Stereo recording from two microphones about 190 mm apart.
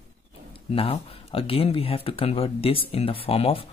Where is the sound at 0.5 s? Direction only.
30° left (ahead or behind).